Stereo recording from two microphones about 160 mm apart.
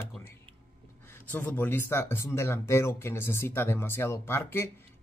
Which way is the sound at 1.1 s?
15° left (ahead or behind).